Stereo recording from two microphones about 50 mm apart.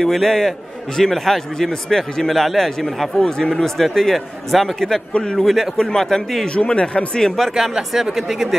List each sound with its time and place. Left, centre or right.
0.0 s a man's voice: centre
6.4 s a man's voice: left
7.3 s a man's voice: centre